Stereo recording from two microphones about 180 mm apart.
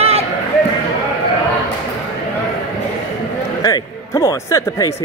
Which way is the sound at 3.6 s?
20° left (ahead or behind).